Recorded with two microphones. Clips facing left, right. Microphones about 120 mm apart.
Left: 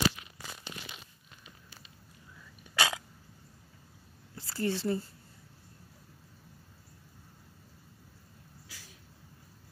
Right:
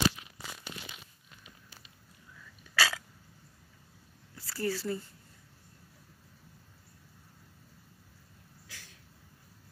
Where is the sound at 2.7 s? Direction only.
20° left (ahead or behind).